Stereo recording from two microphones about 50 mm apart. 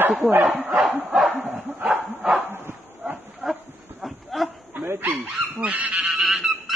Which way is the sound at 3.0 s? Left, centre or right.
Centre.